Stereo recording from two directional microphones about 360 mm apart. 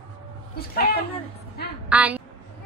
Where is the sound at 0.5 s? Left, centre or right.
Left.